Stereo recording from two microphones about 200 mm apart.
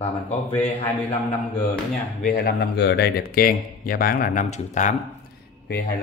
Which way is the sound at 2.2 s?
50° left (ahead or behind).